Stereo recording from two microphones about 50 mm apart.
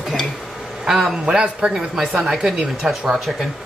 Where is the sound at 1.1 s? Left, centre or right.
Centre.